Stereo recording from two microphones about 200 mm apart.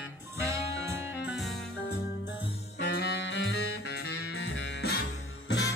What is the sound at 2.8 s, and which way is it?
Saxophone, 55° left (ahead or behind).